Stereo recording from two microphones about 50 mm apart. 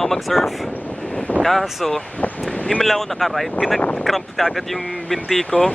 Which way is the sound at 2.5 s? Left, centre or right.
Left.